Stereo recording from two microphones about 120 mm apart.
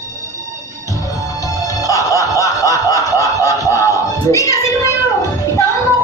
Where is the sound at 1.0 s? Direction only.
25° left (ahead or behind).